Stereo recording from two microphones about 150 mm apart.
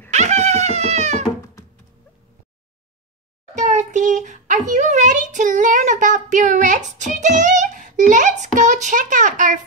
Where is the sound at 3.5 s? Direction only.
55° right (ahead or behind).